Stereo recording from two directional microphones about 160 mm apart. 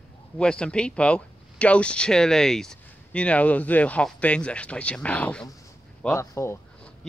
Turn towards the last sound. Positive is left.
turn(degrees=15)  # may be behind; listen again after turning